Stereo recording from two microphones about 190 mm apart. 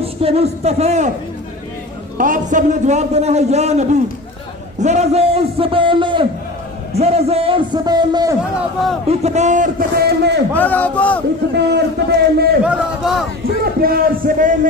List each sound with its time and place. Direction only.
0.0 s a man's voice: 30° right (ahead or behind)
2.1 s a man's voice: 45° right (ahead or behind); by 8.4 s 20° right (ahead or behind)
9.2 s a man's voice: 35° right (ahead or behind); by 10.4 s 60° right (ahead or behind)
10.5 s a man's voice: 10° left (ahead or behind)
11.5 s a man's voice: 60° right (ahead or behind)
12.6 s speech: 5° right (ahead or behind)
13.7 s a man's voice: 50° right (ahead or behind)